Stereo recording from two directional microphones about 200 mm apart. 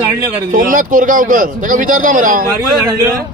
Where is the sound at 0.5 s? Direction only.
40° right (ahead or behind).